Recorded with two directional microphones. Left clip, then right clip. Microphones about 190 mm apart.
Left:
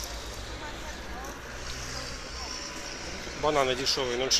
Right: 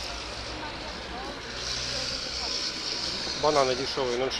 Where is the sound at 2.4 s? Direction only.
30° left (ahead or behind).